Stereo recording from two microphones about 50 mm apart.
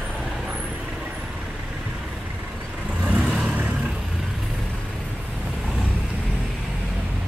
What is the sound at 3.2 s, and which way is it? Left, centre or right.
Vehicle, centre.